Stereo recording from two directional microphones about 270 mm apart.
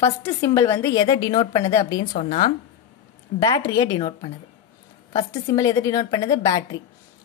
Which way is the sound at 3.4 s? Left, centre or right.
Centre.